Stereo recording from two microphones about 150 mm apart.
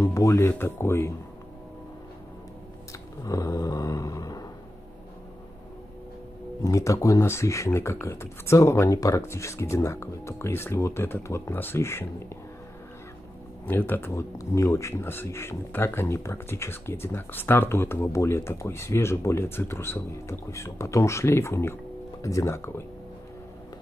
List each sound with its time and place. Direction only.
0.0 s speech: 20° left (ahead or behind)
2.9 s snoring: 20° left (ahead or behind)
6.6 s speech: 20° left (ahead or behind)
13.7 s speech: 15° left (ahead or behind)